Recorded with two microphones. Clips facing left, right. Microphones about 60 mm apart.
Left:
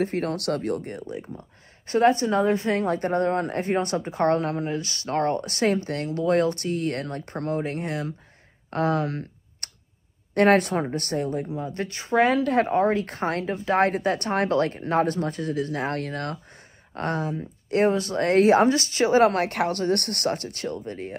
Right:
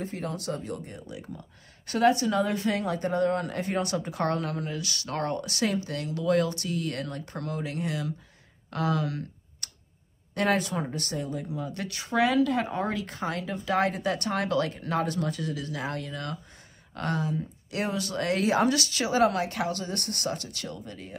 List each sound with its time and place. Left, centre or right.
0.0 s speech: left
1.0 s a woman's voice: left
8.6 s clicking: left
10.3 s speech: left
11.5 s a woman's voice: left
13.0 s a woman's voice: left
16.9 s a woman's voice: left
18.7 s speech: left